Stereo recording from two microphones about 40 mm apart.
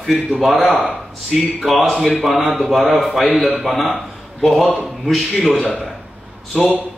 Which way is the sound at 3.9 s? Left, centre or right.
Centre.